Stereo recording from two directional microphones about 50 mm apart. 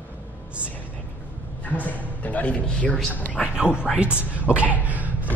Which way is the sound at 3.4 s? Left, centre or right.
Centre.